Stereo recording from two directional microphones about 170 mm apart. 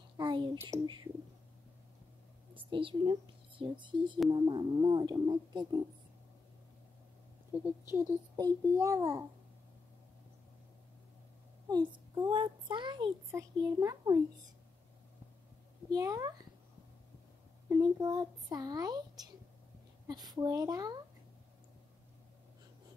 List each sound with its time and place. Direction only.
0.2 s a sound: 25° right (ahead or behind)
0.7 s a child's voice: 20° right (ahead or behind)
2.5 s a child's voice: 30° right (ahead or behind)
7.5 s a child's voice: 10° right (ahead or behind)
11.7 s a child's voice: 25° right (ahead or behind)
15.9 s a child's voice: 20° right (ahead or behind)
17.6 s a child's voice: 25° right (ahead or behind)